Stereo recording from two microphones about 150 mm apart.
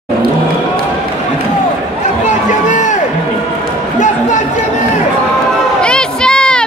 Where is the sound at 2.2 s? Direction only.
55° left (ahead or behind).